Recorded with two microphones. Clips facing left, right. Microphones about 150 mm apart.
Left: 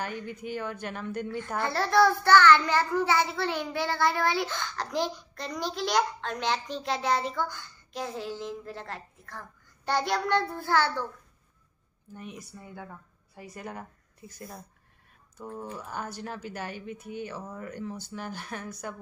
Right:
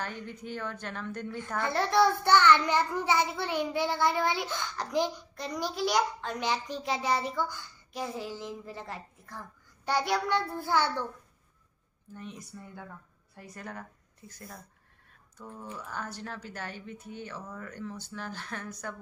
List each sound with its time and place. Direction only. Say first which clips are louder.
0.0 s speech: left 3 dB; 10° left (ahead or behind)
1.7 s a child's voice: left 2 dB; 20° right (ahead or behind)
12.2 s speech: left 1 dB; 10° left (ahead or behind)
17.4 s speech: left 3 dB; 25° left (ahead or behind)
17.6 s speech: left 3 dB; 10° left (ahead or behind)